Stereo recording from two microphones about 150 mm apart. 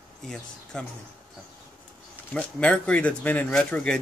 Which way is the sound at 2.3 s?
5° left (ahead or behind).